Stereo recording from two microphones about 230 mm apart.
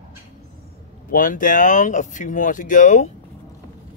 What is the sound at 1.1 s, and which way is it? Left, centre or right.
Speech, left.